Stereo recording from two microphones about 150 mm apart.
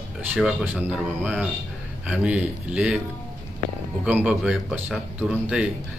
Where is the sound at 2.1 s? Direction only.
5° right (ahead or behind).